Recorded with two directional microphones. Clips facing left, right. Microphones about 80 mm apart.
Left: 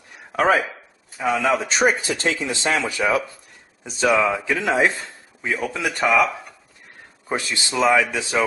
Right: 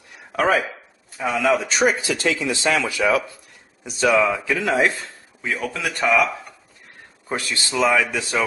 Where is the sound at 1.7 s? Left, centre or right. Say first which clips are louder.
Even; left.